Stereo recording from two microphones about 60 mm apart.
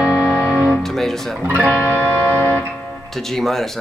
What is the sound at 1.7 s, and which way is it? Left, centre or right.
Music, left.